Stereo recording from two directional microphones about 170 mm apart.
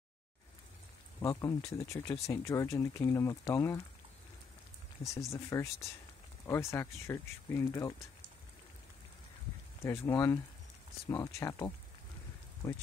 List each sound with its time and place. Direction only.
1.2 s speech: 20° left (ahead or behind)
5.0 s speech: 20° left (ahead or behind)
10.0 s speech: 15° left (ahead or behind)